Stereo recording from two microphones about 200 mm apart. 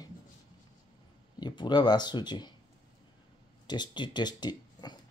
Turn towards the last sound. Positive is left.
turn(degrees=20)  # may be behind; listen again after turning